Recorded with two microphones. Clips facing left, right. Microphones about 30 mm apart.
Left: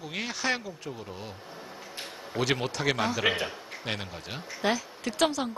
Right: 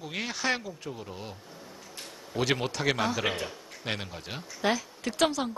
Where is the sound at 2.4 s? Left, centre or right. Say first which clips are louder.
Even; centre.